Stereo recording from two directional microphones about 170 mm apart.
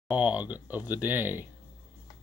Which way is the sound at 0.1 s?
10° right (ahead or behind).